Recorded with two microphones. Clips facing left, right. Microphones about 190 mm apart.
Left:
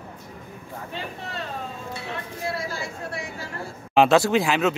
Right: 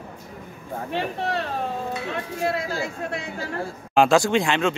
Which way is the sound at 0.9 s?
70° right (ahead or behind).